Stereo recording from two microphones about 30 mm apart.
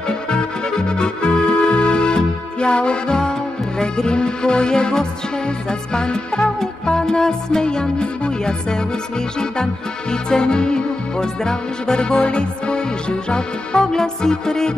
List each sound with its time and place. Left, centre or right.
0.3 s music: left
3.2 s music: left
10.3 s music: left